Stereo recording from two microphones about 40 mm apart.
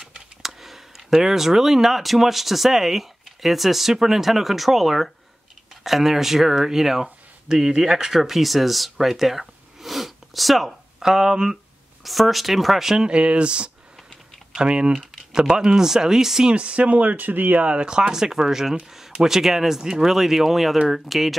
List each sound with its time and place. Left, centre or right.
0.4 s speech: centre
11.0 s speech: centre
12.0 s speech: centre
13.1 s speech: right
16.5 s speech: right
17.6 s speech: right
18.9 s a sound: centre
19.2 s speech: centre